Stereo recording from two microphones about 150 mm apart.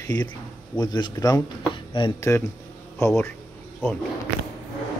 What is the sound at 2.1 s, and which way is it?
Speech, 15° left (ahead or behind).